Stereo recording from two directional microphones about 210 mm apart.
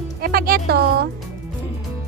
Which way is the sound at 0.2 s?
45° right (ahead or behind).